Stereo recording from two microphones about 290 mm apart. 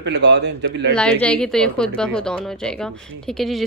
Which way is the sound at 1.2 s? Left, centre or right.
Centre.